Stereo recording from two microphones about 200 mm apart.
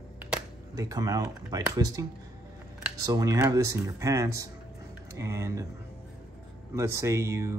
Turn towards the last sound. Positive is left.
turn(degrees=-15)  # may be behind; listen again after turning